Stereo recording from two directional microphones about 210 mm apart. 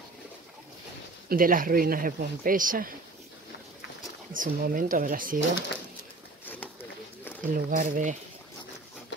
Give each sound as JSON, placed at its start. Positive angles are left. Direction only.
{"t": 1.3, "sound": "speech", "side_deg": -40}
{"t": 4.3, "sound": "speech", "side_deg": -40}
{"t": 7.5, "sound": "speech", "side_deg": -40}